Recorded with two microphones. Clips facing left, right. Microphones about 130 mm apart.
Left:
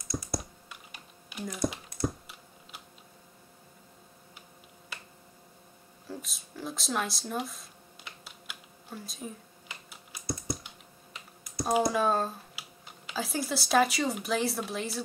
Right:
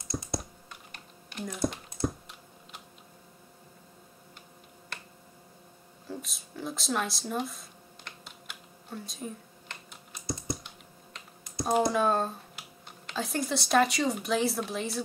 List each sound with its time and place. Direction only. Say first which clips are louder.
0.0 s computer keyboard: even; 25° right (ahead or behind)
0.3 s computer keyboard: even; 5° left (ahead or behind)
6.0 s a sound: right 1 dB; centre (ahead or behind)
10.4 s computer keyboard: even; centre (ahead or behind)
11.6 s speech: right 1 dB; centre (ahead or behind)